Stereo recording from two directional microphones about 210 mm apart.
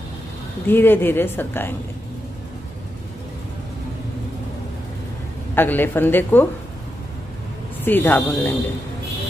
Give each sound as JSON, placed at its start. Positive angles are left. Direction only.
{"t": 0.7, "sound": "a woman's voice", "side_deg": 10}
{"t": 5.5, "sound": "a woman's voice", "side_deg": 10}
{"t": 7.8, "sound": "a woman's voice", "side_deg": 10}